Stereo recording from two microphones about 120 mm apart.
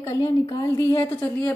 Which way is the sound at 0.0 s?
25° left (ahead or behind).